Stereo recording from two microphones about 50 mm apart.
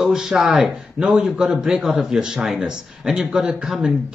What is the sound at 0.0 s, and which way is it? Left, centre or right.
A man's voice, centre.